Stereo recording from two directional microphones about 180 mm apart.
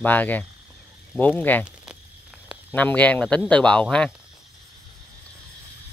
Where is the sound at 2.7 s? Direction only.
10° left (ahead or behind).